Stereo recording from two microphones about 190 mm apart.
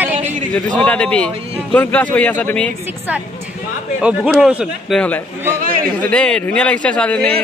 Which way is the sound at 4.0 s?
5° right (ahead or behind).